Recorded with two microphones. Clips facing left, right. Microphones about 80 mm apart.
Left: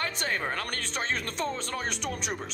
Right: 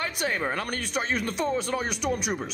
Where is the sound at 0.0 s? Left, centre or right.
Centre.